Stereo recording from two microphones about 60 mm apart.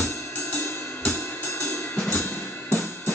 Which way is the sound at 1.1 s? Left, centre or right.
Left.